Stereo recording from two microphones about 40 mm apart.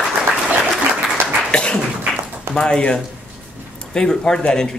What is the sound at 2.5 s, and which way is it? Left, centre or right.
Speech, centre.